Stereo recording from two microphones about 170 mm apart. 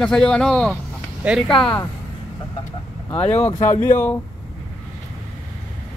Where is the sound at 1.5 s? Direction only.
30° left (ahead or behind).